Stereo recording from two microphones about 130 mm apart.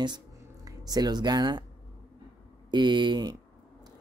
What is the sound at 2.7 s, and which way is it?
Speech, 35° right (ahead or behind).